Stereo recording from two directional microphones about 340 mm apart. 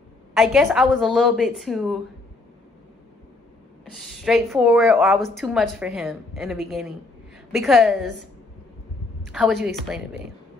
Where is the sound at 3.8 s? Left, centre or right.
Centre.